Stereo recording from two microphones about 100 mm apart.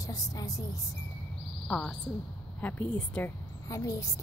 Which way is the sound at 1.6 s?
10° left (ahead or behind).